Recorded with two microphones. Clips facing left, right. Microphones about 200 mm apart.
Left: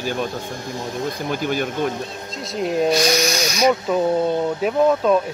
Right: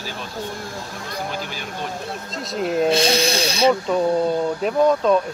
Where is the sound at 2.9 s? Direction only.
30° right (ahead or behind).